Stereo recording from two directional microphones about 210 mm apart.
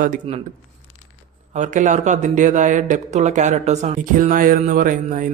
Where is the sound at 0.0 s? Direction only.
40° right (ahead or behind).